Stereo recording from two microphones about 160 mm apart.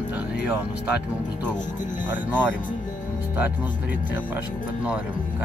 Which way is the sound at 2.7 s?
55° left (ahead or behind).